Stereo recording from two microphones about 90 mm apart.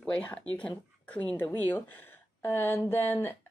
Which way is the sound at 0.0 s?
15° left (ahead or behind).